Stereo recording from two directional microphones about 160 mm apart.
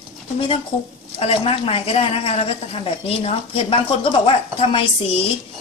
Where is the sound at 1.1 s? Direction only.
40° left (ahead or behind).